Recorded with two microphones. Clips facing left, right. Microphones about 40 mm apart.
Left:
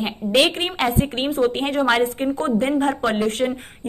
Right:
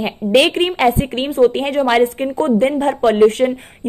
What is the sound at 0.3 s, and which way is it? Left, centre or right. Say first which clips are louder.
Speech: right 5 dB; right.